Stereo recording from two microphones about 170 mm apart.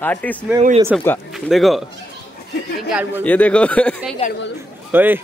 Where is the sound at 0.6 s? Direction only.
35° right (ahead or behind).